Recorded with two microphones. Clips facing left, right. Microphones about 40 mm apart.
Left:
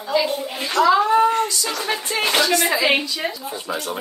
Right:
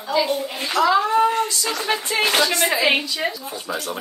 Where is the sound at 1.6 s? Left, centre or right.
Centre.